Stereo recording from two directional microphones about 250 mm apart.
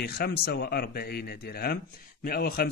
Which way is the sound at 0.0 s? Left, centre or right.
Left.